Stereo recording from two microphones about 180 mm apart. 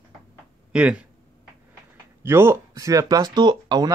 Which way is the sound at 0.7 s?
5° right (ahead or behind).